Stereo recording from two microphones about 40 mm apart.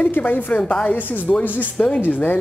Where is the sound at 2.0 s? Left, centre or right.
Left.